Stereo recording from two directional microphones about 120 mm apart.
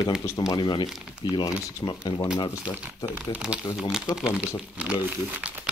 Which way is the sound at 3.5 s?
10° right (ahead or behind).